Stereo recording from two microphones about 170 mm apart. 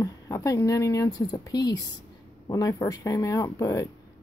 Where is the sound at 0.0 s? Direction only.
20° left (ahead or behind).